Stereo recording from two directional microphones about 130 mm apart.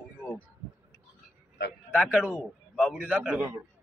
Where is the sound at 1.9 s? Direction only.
5° right (ahead or behind).